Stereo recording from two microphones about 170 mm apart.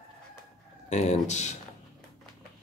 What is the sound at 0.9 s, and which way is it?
Speech, 45° left (ahead or behind).